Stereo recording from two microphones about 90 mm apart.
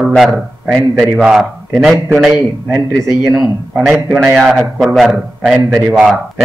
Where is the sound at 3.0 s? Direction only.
35° right (ahead or behind).